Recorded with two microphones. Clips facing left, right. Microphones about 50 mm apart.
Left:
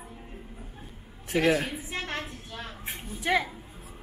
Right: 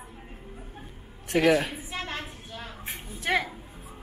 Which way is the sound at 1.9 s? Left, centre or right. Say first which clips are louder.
Left 1 dB; left.